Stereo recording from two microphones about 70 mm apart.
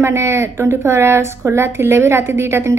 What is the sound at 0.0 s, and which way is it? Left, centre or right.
Speech, right.